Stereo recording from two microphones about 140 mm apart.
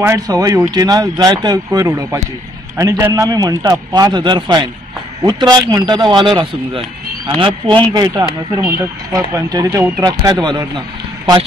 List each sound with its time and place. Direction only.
0.0 s speech: 25° right (ahead or behind)